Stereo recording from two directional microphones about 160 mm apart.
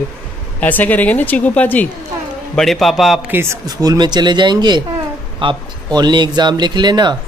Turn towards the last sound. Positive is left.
turn(degrees=-25)  # may be behind; listen again after turning